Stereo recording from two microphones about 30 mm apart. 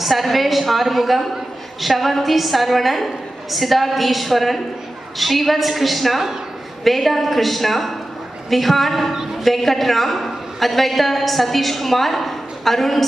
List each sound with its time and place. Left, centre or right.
0.0 s a woman's voice: centre
9.1 s a sound: centre
9.4 s a woman's voice: centre